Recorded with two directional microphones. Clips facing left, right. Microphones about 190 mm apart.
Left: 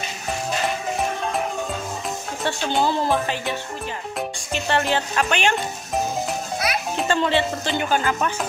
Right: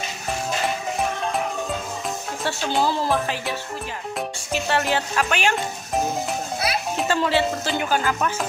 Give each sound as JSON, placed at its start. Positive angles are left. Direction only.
{"t": 2.4, "sound": "speech", "side_deg": 0}
{"t": 6.7, "sound": "music", "side_deg": -30}
{"t": 7.0, "sound": "speech", "side_deg": -5}